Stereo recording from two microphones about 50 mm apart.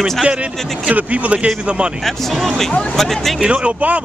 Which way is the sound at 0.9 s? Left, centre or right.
Right.